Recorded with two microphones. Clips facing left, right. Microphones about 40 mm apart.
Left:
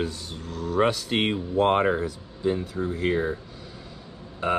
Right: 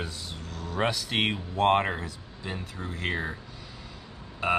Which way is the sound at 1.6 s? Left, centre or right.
Right.